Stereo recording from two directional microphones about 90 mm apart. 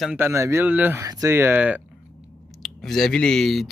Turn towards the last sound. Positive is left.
turn(degrees=5)  # may be behind; listen again after turning